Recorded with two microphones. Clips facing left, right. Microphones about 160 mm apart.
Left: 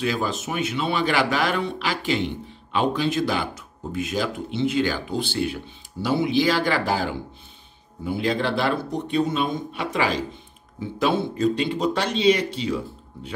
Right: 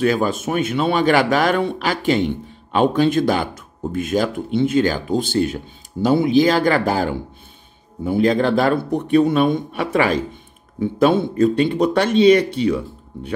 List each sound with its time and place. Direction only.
0.0 s speech: 50° right (ahead or behind)